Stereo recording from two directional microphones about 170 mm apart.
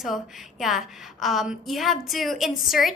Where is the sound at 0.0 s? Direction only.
Centre (ahead or behind).